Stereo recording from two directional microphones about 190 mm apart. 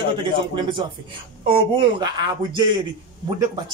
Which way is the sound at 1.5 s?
25° right (ahead or behind).